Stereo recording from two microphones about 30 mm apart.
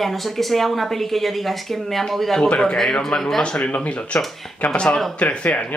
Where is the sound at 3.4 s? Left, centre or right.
Left.